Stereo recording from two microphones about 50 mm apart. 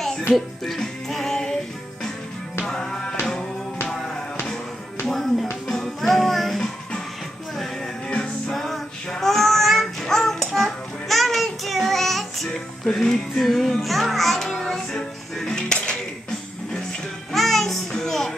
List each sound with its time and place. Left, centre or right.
0.7 s music: centre
2.6 s music: centre
5.0 s music: centre
8.1 s music: centre
8.5 s music: centre
9.1 s child singing: centre
12.8 s music: centre
17.3 s music: centre